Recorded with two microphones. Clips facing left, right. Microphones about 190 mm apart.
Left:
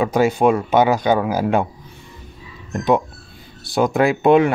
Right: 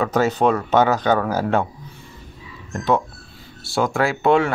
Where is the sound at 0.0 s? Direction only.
15° left (ahead or behind).